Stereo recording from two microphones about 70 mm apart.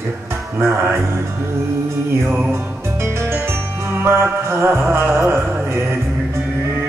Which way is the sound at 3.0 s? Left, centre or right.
Right.